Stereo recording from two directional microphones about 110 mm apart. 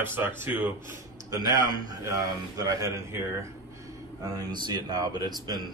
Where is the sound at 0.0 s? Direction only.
20° right (ahead or behind).